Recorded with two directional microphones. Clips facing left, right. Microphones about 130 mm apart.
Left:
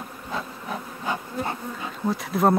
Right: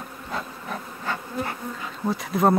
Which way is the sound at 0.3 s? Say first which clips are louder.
Left 1 dB; centre (ahead or behind).